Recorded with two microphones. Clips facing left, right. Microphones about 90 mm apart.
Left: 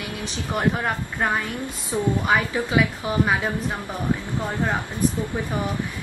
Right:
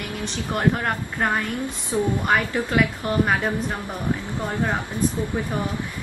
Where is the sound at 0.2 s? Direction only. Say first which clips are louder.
Right 1 dB; 5° left (ahead or behind).